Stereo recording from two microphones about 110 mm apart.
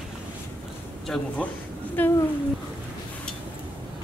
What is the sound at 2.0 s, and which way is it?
Speech, 15° left (ahead or behind).